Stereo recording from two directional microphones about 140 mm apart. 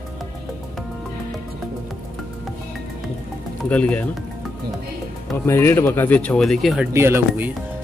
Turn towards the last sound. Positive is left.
turn(degrees=-15)  # may be behind; listen again after turning